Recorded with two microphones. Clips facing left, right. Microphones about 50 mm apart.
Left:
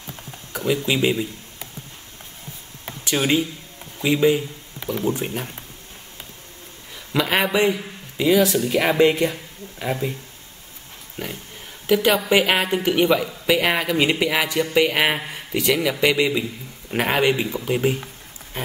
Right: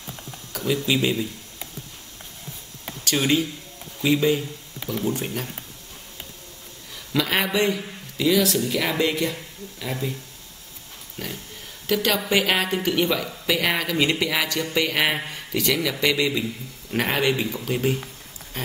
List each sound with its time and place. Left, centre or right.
0.0 s a sound: left
2.8 s a sound: centre
4.0 s speech: centre
7.1 s a man's voice: centre
8.3 s speech: left
11.2 s speech: left